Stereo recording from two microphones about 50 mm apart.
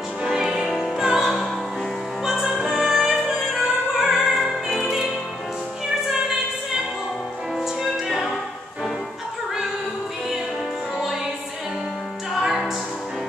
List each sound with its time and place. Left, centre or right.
0.2 s music: centre
7.5 s music: centre
12.4 s music: centre